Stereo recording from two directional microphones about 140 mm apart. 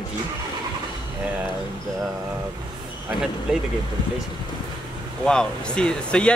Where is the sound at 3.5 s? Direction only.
5° right (ahead or behind).